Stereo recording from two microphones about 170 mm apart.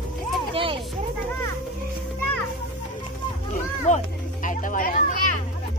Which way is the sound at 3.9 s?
45° left (ahead or behind).